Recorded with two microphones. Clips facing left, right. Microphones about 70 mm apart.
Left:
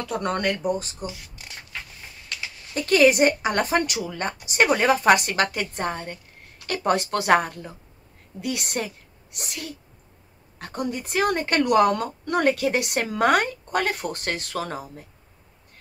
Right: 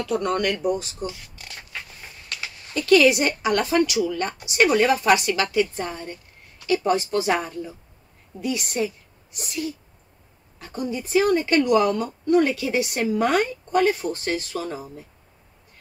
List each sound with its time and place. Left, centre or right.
0.1 s speech: left
1.0 s a sound: centre
2.7 s a woman's voice: left